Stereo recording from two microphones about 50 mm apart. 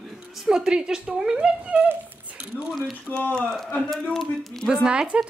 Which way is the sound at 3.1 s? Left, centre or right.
Left.